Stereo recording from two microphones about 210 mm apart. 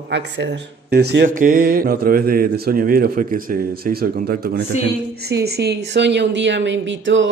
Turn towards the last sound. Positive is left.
turn(degrees=-60)  # may be behind; listen again after turning